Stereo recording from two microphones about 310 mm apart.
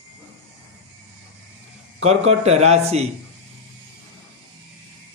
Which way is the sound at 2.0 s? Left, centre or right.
Right.